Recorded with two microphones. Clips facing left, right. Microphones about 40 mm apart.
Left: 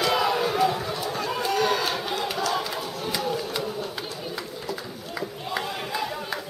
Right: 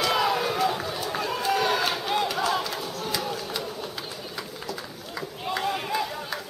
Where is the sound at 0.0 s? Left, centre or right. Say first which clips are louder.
Left 1 dB; centre.